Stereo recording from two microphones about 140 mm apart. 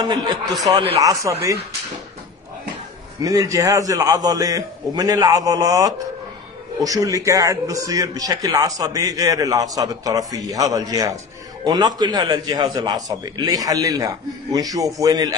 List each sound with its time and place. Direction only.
0.0 s a man's voice: 30° right (ahead or behind)
3.2 s a man's voice: 25° right (ahead or behind)